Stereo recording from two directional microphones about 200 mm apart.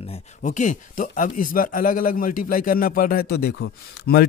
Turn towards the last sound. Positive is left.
turn(degrees=50)  # may be behind; listen again after turning